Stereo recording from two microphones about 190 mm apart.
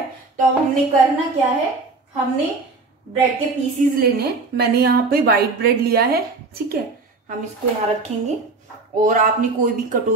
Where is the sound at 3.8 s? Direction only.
45° right (ahead or behind).